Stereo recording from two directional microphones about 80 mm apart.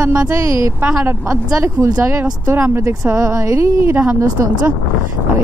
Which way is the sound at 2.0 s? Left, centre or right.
Right.